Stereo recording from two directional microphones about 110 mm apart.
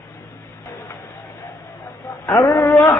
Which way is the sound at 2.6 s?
30° left (ahead or behind).